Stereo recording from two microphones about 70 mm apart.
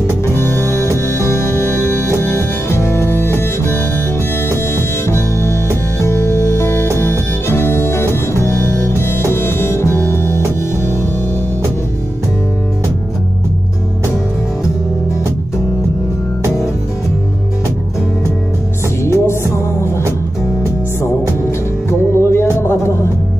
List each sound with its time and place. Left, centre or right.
0.4 s music: left
19.0 s music: left
22.1 s music: left